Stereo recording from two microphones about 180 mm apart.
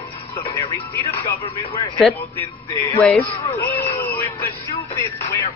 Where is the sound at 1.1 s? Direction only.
30° left (ahead or behind).